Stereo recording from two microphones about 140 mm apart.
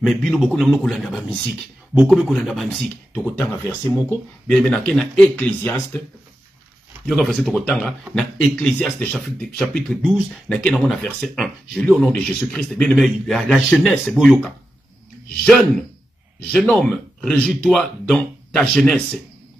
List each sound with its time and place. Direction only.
0.0 s speech: 5° left (ahead or behind)
3.3 s speech: 15° left (ahead or behind)
7.1 s speech: centre (ahead or behind)
15.4 s speech: 5° left (ahead or behind)